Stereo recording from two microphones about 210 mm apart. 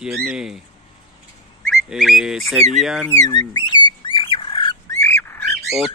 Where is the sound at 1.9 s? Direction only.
Centre (ahead or behind).